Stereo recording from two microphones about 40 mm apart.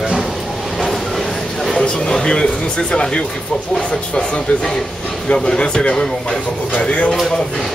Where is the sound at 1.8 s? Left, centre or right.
Left.